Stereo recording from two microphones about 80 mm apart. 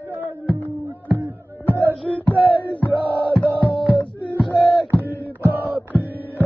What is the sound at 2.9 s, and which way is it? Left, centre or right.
Music, left.